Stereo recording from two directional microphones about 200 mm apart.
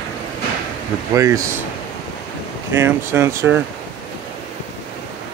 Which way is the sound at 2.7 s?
10° right (ahead or behind).